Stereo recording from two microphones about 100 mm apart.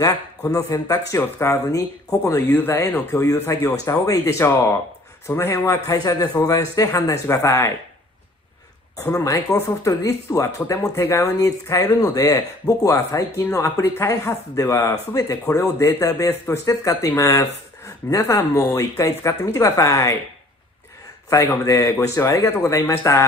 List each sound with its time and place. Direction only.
0.5 s speech: 35° left (ahead or behind)
5.9 s speech: 40° left (ahead or behind)
8.9 s speech: 35° left (ahead or behind)
21.6 s speech: 35° left (ahead or behind)